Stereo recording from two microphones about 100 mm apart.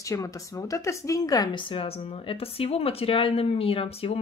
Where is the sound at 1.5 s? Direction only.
65° left (ahead or behind).